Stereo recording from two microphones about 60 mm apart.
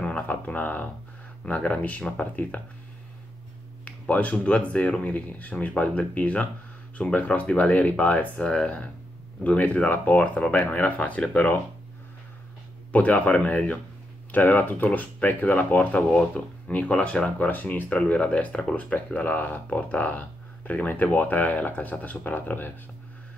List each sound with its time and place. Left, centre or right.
0.3 s speech: left
1.4 s speech: centre
3.8 s speech: left
12.9 s speech: left
16.1 s speech: centre; by 22.7 s left